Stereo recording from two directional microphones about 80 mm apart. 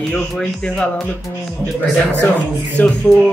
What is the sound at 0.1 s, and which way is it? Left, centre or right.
Speech, centre.